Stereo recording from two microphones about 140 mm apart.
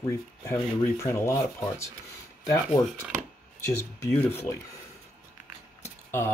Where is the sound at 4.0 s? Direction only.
20° left (ahead or behind).